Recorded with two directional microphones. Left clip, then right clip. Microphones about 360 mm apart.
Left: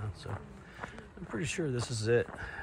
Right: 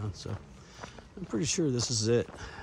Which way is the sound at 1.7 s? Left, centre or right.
Centre.